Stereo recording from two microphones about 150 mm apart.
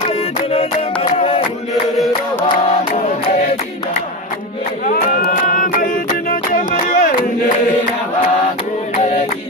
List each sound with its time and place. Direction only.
0.1 s music: 40° left (ahead or behind)
4.8 s music: 70° left (ahead or behind)